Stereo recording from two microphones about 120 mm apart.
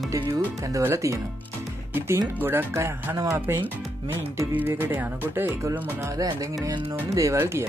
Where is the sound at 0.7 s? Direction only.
25° right (ahead or behind).